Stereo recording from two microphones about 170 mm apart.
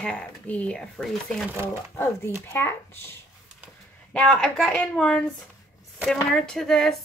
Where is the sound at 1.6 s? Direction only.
15° left (ahead or behind).